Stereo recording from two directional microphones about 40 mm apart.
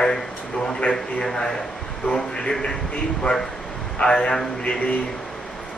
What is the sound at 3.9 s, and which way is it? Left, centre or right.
A man's voice, left.